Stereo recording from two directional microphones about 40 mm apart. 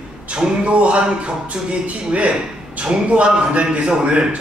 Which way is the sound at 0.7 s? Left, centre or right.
Right.